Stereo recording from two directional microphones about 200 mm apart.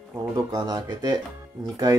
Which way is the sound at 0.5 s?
20° right (ahead or behind).